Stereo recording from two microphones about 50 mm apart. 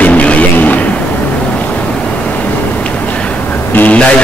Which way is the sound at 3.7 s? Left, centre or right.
Left.